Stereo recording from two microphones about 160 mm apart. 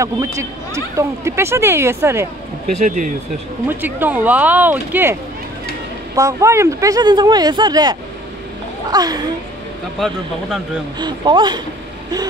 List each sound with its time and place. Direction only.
0.0 s speech: 20° right (ahead or behind)
2.8 s speech: 55° right (ahead or behind)
3.6 s speech: 10° right (ahead or behind)
6.1 s speech: 20° right (ahead or behind)
9.9 s speech: centre (ahead or behind)
11.0 s speech: 30° right (ahead or behind)